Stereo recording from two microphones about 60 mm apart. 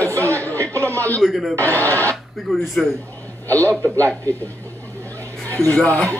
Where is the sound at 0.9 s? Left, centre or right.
Left.